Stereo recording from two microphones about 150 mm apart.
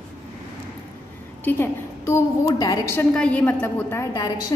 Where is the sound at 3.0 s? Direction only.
10° left (ahead or behind).